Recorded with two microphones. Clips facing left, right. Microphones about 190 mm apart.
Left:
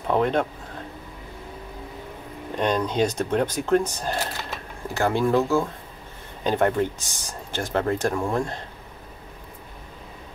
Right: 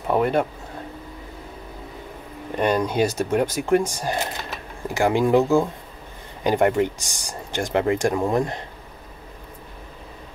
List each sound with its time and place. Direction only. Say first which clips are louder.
0.1 s speech: right 1 dB; 10° right (ahead or behind)
2.5 s speech: right 2 dB; 10° right (ahead or behind)